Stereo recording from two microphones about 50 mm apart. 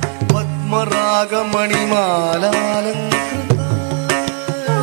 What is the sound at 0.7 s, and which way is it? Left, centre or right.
Music, centre.